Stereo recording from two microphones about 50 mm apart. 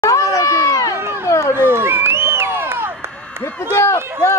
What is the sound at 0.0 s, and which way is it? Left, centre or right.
Run, left.